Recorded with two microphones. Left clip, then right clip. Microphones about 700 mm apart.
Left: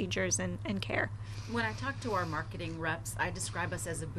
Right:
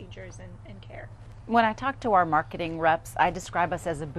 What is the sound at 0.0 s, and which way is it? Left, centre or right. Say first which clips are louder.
A woman's voice: left 11 dB; left.